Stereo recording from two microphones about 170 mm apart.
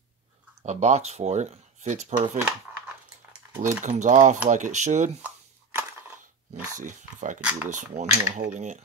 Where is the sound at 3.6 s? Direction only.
50° right (ahead or behind).